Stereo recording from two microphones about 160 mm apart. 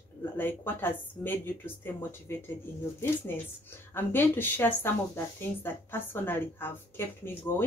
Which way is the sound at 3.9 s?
15° left (ahead or behind).